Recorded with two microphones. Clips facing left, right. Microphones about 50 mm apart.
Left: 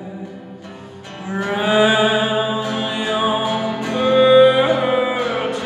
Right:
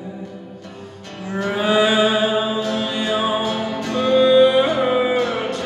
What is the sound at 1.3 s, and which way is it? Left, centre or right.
Mantra, centre.